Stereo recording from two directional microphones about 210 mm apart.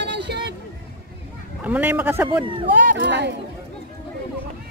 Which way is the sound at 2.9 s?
55° right (ahead or behind).